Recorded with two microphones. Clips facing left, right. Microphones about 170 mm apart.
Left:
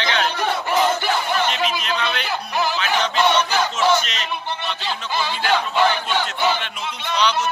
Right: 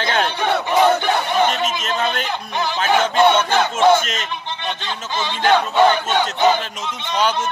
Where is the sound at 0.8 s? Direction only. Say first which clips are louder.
Right 4 dB; 65° right (ahead or behind).